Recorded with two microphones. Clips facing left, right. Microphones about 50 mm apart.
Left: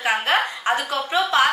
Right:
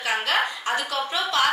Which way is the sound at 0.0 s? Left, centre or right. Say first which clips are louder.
Left 3 dB; left.